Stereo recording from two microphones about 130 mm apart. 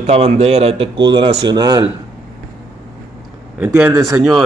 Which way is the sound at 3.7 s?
20° right (ahead or behind).